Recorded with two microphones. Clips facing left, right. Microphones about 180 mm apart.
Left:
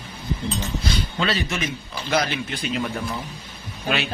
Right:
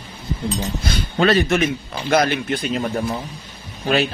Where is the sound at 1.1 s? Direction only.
55° right (ahead or behind).